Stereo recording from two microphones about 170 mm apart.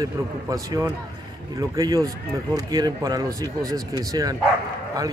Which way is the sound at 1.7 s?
20° right (ahead or behind).